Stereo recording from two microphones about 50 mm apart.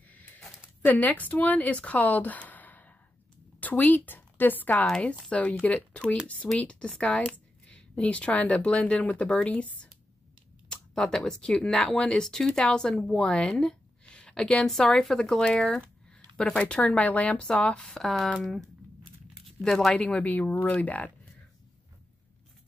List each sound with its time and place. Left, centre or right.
0.0 s a sound: left
0.8 s a woman's voice: left
4.8 s speech: centre
5.3 s speech: left
10.7 s speech: centre
16.1 s a sound: centre
16.5 s speech: left
17.8 s speech: centre
20.2 s speech: left